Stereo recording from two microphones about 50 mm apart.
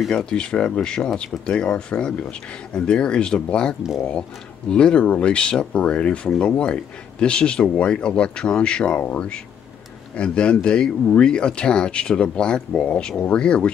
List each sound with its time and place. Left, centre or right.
0.1 s speech: centre
10.1 s speech: left